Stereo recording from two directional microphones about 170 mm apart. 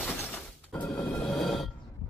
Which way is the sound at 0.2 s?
10° left (ahead or behind).